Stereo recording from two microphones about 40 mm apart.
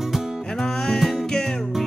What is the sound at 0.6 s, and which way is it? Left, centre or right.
Music, centre.